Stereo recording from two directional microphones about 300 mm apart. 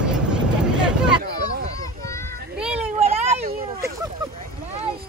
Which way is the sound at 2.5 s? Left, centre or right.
Centre.